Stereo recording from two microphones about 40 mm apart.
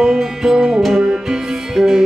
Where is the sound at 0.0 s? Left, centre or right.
Centre.